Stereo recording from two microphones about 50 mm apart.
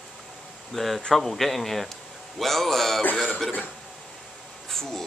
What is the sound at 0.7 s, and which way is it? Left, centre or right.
Speech, centre.